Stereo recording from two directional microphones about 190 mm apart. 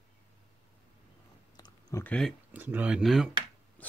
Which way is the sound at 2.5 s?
10° right (ahead or behind).